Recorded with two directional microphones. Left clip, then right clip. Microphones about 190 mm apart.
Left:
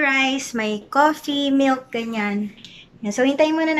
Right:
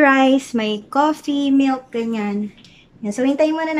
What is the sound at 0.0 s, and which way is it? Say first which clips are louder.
Speech: right 5 dB; 45° right (ahead or behind).